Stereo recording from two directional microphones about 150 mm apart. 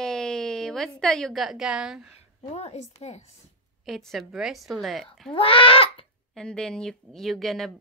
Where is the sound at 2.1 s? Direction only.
45° left (ahead or behind).